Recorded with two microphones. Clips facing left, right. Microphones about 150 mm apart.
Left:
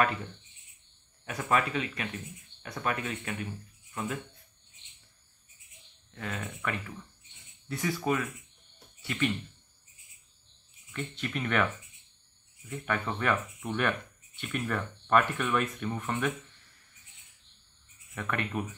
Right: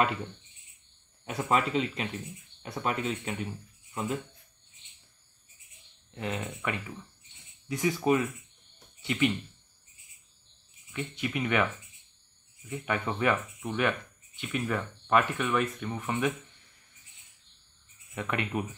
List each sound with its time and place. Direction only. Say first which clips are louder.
1.2 s speech: right 1 dB; 25° right (ahead or behind)
6.1 s speech: right 3 dB; 20° right (ahead or behind)
10.9 s speech: right 2 dB; 10° right (ahead or behind)
18.1 s speech: right 2 dB; 20° right (ahead or behind)